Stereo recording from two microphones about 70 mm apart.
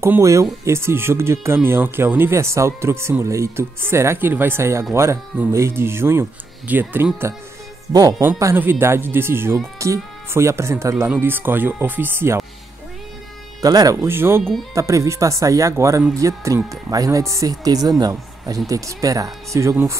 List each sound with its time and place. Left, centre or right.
0.2 s speech: right
7.9 s speech: right
8.5 s speech: right
11.1 s speech: right
13.6 s speech: right
14.0 s speech: right
14.7 s speech: right
18.7 s speech: right
19.6 s speech: right